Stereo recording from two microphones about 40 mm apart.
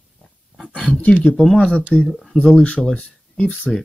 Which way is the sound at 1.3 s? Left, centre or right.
Right.